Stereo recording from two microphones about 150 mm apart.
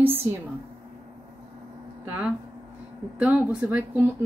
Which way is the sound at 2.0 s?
10° right (ahead or behind).